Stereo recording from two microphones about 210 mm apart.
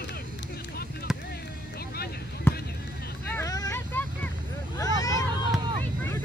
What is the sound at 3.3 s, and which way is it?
Vehicle, 15° left (ahead or behind).